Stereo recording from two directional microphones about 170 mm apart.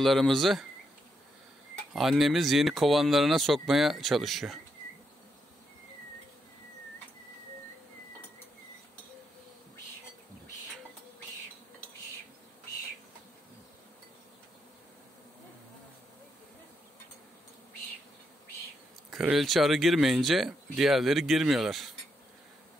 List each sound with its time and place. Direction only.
0.0 s speech: centre (ahead or behind)
2.0 s speech: centre (ahead or behind)
19.0 s speech: centre (ahead or behind)